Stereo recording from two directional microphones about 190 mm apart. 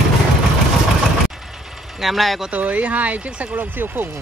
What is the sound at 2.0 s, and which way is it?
Speech, centre (ahead or behind).